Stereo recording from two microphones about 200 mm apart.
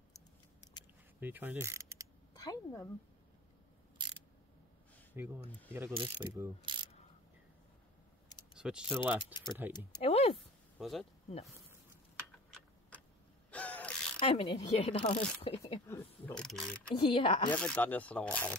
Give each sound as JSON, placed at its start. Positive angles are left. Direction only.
{"t": 1.2, "sound": "mechanisms", "side_deg": -10}
{"t": 2.3, "sound": "a sound", "side_deg": 20}
{"t": 4.0, "sound": "a sound", "side_deg": -20}
{"t": 5.2, "sound": "pulleys", "side_deg": -10}
{"t": 8.5, "sound": "speech", "side_deg": -5}
{"t": 9.2, "sound": "speech", "side_deg": 20}
{"t": 10.3, "sound": "a sound", "side_deg": 0}
{"t": 13.5, "sound": "a sound", "side_deg": 5}
{"t": 14.2, "sound": "speech", "side_deg": 30}
{"t": 15.9, "sound": "speech", "side_deg": 10}
{"t": 17.1, "sound": "speech", "side_deg": 25}
{"t": 17.6, "sound": "speech", "side_deg": 5}